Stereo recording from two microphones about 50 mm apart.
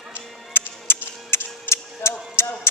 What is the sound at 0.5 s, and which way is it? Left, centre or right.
Music, left.